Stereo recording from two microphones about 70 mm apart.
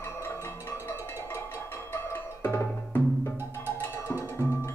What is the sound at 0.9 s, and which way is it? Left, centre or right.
Percussion, left.